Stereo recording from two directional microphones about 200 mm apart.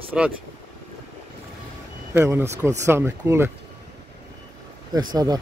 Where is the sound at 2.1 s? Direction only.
10° right (ahead or behind).